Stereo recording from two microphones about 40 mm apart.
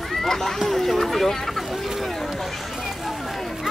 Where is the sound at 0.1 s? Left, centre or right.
Centre.